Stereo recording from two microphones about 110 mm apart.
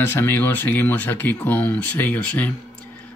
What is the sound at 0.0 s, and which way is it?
Speech, 20° left (ahead or behind).